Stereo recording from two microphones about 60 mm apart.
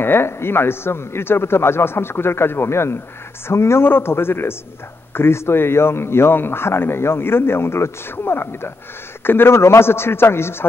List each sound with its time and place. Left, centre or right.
0.0 s a man's voice: left